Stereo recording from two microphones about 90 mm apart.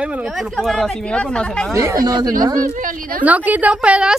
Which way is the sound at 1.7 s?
35° right (ahead or behind).